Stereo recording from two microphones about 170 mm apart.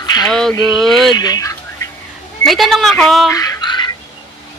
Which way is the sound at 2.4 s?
Centre (ahead or behind).